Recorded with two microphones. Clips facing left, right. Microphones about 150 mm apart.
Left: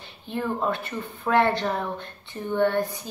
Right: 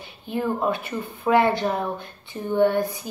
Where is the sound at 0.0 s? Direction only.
10° right (ahead or behind).